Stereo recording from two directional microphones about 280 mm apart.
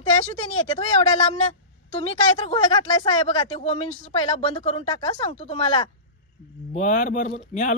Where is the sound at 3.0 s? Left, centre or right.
Left.